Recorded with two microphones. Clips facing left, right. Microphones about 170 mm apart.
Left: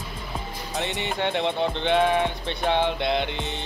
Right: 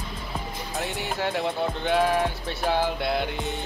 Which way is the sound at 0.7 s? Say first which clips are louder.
Left 2 dB; centre (ahead or behind).